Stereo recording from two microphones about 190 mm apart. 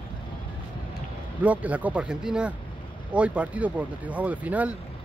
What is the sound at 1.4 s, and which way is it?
Speech, 5° right (ahead or behind).